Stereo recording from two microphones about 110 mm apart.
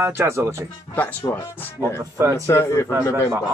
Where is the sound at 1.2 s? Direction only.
20° left (ahead or behind).